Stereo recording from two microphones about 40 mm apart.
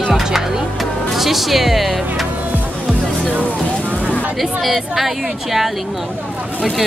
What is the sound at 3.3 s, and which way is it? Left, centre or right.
Vehicle, right.